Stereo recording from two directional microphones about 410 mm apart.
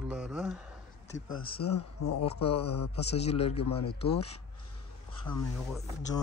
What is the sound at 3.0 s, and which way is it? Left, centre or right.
Speech, centre.